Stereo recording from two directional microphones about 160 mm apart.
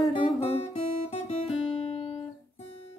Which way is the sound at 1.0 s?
40° left (ahead or behind).